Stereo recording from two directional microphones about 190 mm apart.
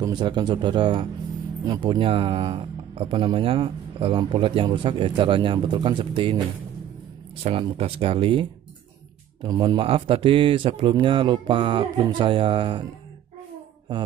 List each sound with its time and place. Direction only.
0.0 s speech: 25° right (ahead or behind)
7.4 s speech: 30° right (ahead or behind)